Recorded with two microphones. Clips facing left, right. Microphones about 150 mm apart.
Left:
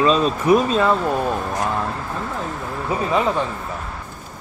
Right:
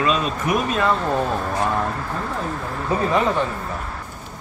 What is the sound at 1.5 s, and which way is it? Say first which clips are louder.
Speech: right 1 dB; 5° right (ahead or behind).